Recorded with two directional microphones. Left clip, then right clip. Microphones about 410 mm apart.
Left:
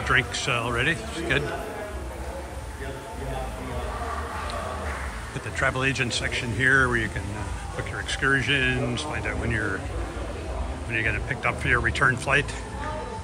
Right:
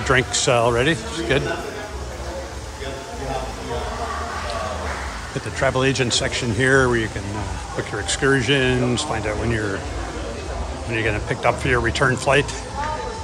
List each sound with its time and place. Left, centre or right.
0.1 s speech: centre
5.6 s speech: centre
8.1 s speech: centre
10.9 s speech: centre